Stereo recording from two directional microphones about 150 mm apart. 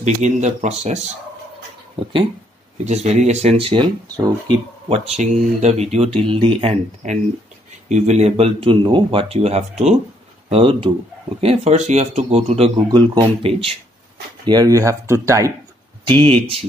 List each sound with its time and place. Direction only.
0.0 s speech: 50° right (ahead or behind)
2.8 s speech: 50° right (ahead or behind); by 4.6 s 30° right (ahead or behind)
4.8 s speech: 45° right (ahead or behind)
6.1 s speech: 35° right (ahead or behind)
7.9 s speech: 50° right (ahead or behind)
12.8 s speech: 30° right (ahead or behind)
14.4 s speech: 25° right (ahead or behind)
16.1 s speech: 35° right (ahead or behind)